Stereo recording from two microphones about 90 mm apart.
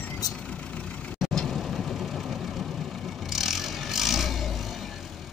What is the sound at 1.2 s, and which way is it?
Vehicle, centre (ahead or behind).